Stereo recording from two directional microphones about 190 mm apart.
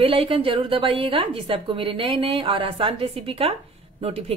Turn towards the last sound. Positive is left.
turn(degrees=-30)  # may be behind; listen again after turning